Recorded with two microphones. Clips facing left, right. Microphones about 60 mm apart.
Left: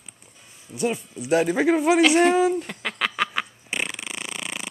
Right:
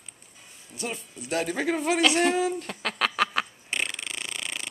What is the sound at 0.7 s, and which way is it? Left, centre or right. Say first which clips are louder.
Speech: left 9 dB; centre.